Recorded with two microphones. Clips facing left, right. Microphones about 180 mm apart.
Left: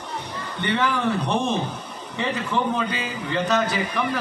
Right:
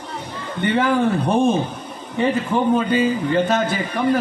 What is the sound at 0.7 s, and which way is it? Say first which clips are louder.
A man's voice: right 5 dB; 50° right (ahead or behind).